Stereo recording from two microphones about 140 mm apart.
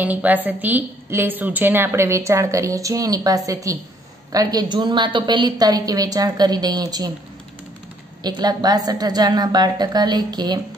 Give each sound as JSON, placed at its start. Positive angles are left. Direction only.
{"t": 0.0, "sound": "a woman's voice", "side_deg": -10}
{"t": 8.2, "sound": "a woman's voice", "side_deg": -30}